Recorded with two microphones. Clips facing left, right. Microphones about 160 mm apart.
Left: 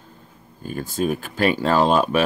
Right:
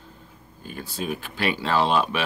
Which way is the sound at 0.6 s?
45° left (ahead or behind).